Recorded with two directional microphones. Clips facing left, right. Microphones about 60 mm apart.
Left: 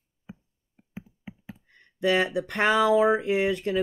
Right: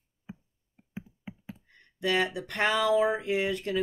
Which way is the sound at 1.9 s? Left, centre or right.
Left.